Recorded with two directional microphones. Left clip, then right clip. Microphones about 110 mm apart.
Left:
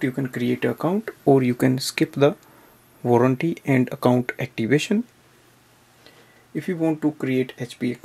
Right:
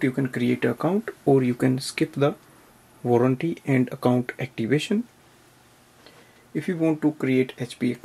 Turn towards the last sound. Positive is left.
turn(degrees=5)  # may be behind; listen again after turning